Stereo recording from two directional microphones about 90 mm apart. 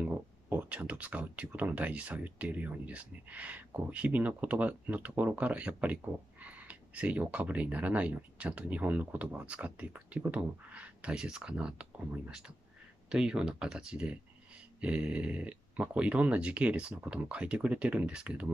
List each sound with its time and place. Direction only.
0.0 s speech: 20° right (ahead or behind)